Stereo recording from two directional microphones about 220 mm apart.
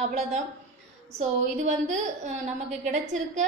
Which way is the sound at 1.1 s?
35° right (ahead or behind).